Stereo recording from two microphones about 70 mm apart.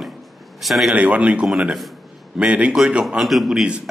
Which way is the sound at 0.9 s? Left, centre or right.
Centre.